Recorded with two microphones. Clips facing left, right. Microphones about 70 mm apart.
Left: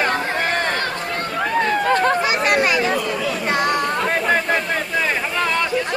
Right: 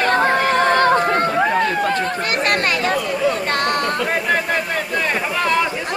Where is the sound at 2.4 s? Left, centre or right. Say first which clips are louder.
Right 1 dB; centre.